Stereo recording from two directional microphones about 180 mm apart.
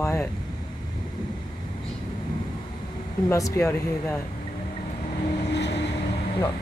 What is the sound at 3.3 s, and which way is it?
Speech, 15° left (ahead or behind).